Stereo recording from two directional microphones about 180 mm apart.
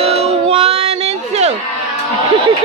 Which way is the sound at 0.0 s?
35° right (ahead or behind).